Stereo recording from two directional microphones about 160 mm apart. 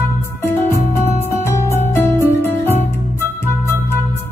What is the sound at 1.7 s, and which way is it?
Music, 15° left (ahead or behind).